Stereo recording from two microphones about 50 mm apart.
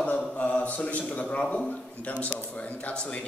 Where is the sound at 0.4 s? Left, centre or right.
Left.